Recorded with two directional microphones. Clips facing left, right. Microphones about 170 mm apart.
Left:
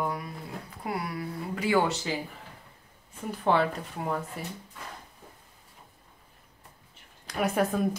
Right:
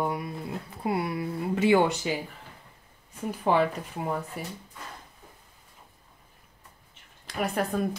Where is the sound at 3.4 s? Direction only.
10° right (ahead or behind).